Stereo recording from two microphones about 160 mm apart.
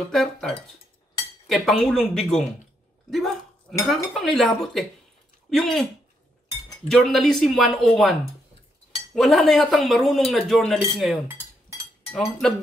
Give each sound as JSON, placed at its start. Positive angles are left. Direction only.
{"t": 0.1, "sound": "speech", "side_deg": 0}
{"t": 6.9, "sound": "speech", "side_deg": 5}
{"t": 12.2, "sound": "speech", "side_deg": 0}